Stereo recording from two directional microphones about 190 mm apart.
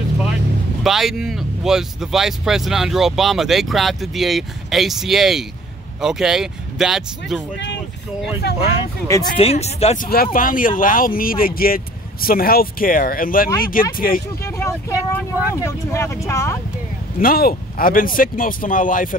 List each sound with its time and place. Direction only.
0.8 s speech: centre (ahead or behind)
7.5 s speech: 65° left (ahead or behind)
9.0 s speech: 15° left (ahead or behind)
9.4 s speech: 35° left (ahead or behind)
10.0 s speech: 50° left (ahead or behind)
14.4 s vehicle: 15° left (ahead or behind)
15.0 s speech: 15° left (ahead or behind)
17.2 s speech: 50° left (ahead or behind)